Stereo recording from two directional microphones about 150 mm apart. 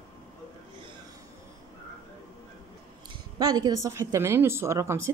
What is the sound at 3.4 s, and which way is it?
Speech, 25° right (ahead or behind).